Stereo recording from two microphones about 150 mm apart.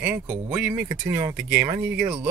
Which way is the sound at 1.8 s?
10° right (ahead or behind).